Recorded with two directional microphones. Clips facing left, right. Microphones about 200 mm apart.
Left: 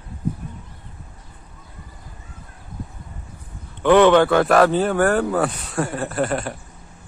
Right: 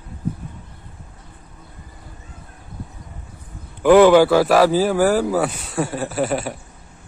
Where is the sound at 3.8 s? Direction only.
5° right (ahead or behind).